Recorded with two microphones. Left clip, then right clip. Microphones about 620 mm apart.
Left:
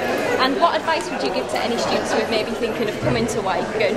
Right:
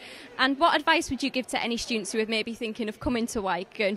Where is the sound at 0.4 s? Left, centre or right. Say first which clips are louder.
Left 2 dB; right.